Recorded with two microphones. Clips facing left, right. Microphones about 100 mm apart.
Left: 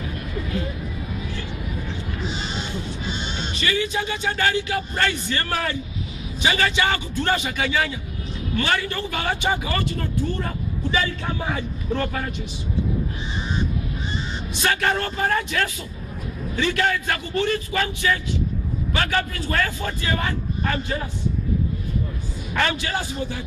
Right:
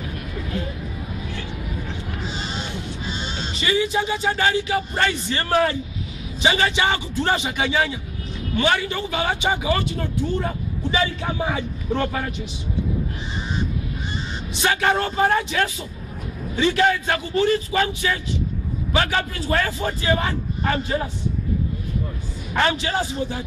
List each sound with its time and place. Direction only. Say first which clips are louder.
3.2 s music: even; 35° right (ahead or behind)
3.6 s a man's voice: right 3 dB; 20° right (ahead or behind)
11.4 s speech: right 2 dB; 15° right (ahead or behind)
14.6 s a man's voice: right 2 dB; 15° right (ahead or behind)
22.5 s a man's voice: right 2 dB; 25° right (ahead or behind)